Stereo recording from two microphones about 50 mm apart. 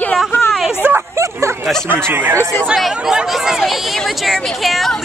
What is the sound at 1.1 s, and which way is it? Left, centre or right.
Dog, right.